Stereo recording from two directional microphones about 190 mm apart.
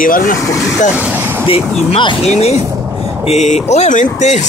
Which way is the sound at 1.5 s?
25° left (ahead or behind).